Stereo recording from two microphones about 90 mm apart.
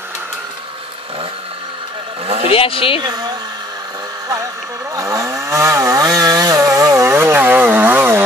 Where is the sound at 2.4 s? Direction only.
90° left.